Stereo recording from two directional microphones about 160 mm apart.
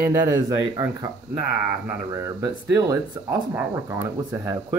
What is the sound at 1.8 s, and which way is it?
Speech, 20° right (ahead or behind).